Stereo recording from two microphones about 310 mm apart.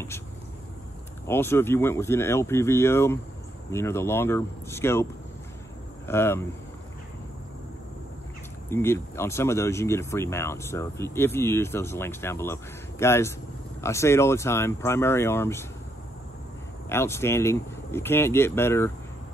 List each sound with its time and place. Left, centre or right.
1.2 s speech: centre
6.0 s speech: centre
8.6 s speech: centre
16.9 s speech: centre